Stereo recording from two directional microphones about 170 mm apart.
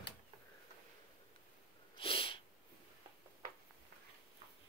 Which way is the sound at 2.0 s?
35° left (ahead or behind).